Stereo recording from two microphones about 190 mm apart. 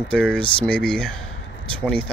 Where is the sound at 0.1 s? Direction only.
5° left (ahead or behind).